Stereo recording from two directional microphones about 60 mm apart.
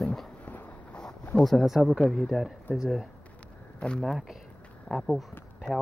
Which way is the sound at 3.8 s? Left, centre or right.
Centre.